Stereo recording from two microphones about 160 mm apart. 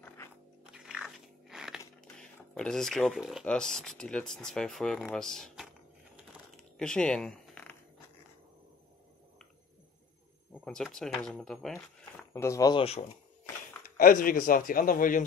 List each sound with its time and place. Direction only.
0.7 s biting: 5° right (ahead or behind)
2.1 s speech: 5° left (ahead or behind)
6.5 s a sound: 5° left (ahead or behind)
10.5 s speech: 5° left (ahead or behind)
12.3 s speech: 20° left (ahead or behind)
13.9 s a man's voice: 60° left (ahead or behind)